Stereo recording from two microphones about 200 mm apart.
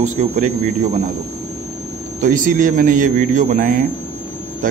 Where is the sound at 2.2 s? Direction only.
40° right (ahead or behind).